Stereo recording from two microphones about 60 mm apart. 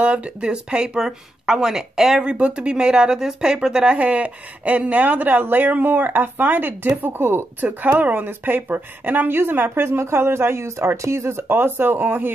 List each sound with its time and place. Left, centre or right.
0.0 s a woman's voice: right